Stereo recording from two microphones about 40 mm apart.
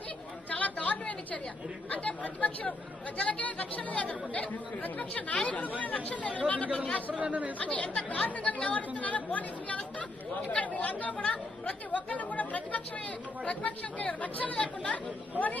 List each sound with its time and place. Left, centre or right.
0.5 s chatter: left
1.9 s speech: left
7.2 s speech: right
7.5 s speech: left